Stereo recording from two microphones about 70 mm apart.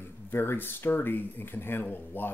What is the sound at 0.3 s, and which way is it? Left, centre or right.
Speech, left.